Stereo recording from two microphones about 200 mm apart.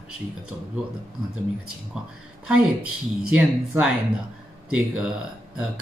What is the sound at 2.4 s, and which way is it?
Speech, 5° right (ahead or behind).